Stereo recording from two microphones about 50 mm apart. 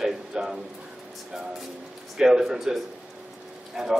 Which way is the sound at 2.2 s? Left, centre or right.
Centre.